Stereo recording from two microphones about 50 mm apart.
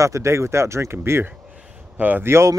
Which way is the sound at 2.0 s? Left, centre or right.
Right.